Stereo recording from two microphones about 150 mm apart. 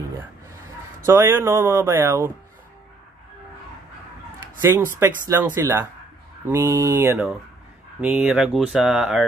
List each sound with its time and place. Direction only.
0.5 s speech: 20° right (ahead or behind)
4.6 s speech: 15° right (ahead or behind)